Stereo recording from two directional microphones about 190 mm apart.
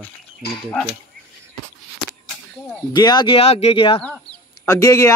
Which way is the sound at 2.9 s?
25° left (ahead or behind).